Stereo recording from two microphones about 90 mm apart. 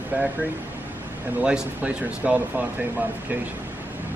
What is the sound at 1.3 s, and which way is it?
Speech, 15° right (ahead or behind).